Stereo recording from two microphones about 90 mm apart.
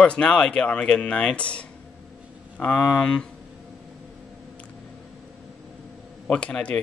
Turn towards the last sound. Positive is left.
turn(degrees=15)  # may be behind; listen again after turning